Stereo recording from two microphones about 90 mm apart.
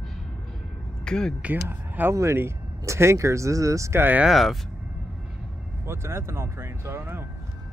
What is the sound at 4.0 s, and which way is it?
Speech, 20° right (ahead or behind).